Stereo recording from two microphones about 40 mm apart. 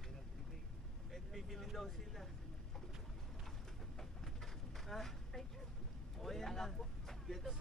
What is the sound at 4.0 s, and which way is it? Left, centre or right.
Vehicle, centre.